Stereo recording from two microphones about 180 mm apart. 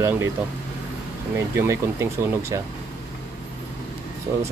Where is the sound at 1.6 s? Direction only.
15° right (ahead or behind).